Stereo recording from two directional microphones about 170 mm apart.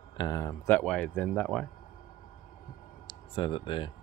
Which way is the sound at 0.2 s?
20° left (ahead or behind).